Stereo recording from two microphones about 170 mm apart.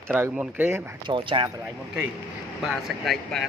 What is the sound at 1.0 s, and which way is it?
Speech, 30° right (ahead or behind).